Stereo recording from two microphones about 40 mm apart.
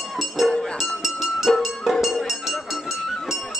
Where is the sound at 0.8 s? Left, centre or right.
Centre.